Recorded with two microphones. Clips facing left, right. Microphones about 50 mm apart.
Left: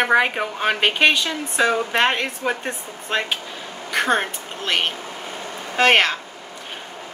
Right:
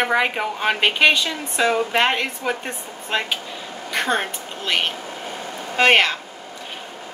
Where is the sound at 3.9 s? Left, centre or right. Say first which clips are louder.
Left 2 dB; left.